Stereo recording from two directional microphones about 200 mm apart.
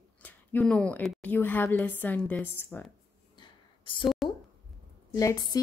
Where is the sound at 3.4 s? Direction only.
25° left (ahead or behind).